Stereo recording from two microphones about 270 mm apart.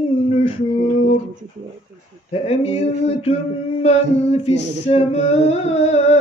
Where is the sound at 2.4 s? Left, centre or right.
Left.